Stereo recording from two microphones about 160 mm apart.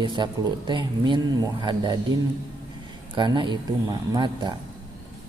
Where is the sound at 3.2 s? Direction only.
30° right (ahead or behind).